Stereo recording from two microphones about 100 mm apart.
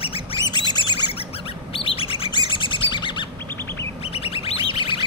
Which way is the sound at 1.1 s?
75° left (ahead or behind).